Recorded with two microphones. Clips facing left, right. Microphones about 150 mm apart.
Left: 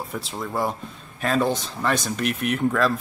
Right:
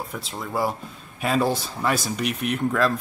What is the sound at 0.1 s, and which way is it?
Speech, centre (ahead or behind).